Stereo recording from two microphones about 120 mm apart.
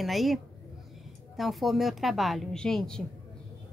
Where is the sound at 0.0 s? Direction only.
Centre (ahead or behind).